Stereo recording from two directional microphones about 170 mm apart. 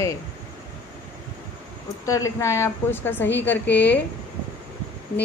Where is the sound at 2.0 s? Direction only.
20° left (ahead or behind).